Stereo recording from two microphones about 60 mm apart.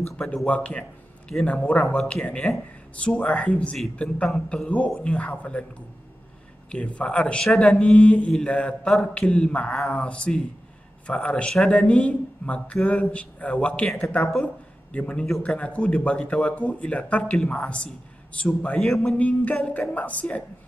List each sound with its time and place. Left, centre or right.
0.2 s speech: centre
0.5 s speech: left
4.3 s speech: centre
5.0 s speech: left
6.7 s speech: centre
18.8 s speech: centre
19.1 s speech: left